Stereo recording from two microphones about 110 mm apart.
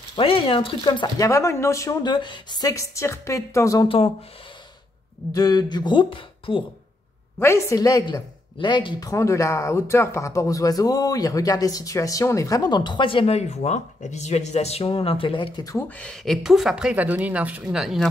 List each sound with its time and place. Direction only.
0.2 s speech: 55° left (ahead or behind)
1.1 s a woman's voice: 30° left (ahead or behind)
2.0 s a woman's voice: 45° left (ahead or behind); by 3.8 s 30° left (ahead or behind)
3.8 s speech: 55° left (ahead or behind)
5.3 s speech: 35° left (ahead or behind); by 6.6 s 50° left (ahead or behind)
7.3 s speech: 25° left (ahead or behind); by 9.1 s 45° left (ahead or behind)
9.1 s speech: 25° left (ahead or behind); by 15.6 s 50° left (ahead or behind)
16.0 s speech: 5° left (ahead or behind)